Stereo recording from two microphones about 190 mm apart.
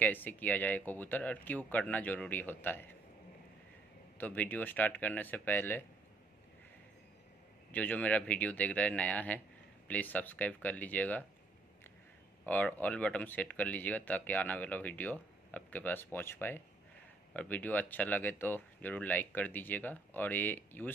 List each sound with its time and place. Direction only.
0.0 s speech: 10° left (ahead or behind)
4.2 s speech: 10° left (ahead or behind)
7.7 s speech: 10° left (ahead or behind)
12.4 s speech: 10° left (ahead or behind)